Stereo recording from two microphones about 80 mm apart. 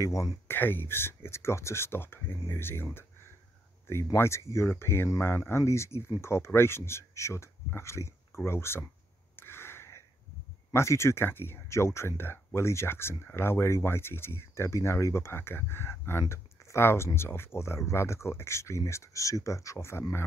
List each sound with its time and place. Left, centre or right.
0.0 s speech: left
0.5 s speech: left
9.4 s a sound: left
10.7 s speech: left